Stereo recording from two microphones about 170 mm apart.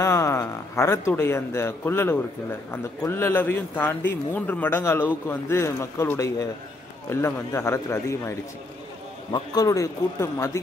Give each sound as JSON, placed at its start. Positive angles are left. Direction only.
{"t": 0.0, "sound": "a man's voice", "side_deg": 15}